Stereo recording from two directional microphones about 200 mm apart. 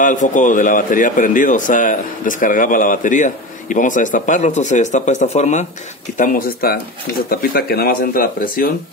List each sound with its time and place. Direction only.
0.0 s a man's voice: 40° left (ahead or behind)